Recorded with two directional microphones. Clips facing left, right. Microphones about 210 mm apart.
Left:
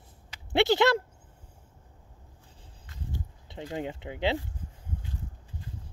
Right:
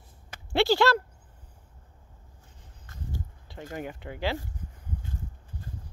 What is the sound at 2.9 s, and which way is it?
Walk, 50° right (ahead or behind).